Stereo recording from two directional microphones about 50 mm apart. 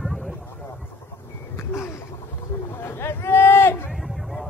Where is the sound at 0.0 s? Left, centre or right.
Centre.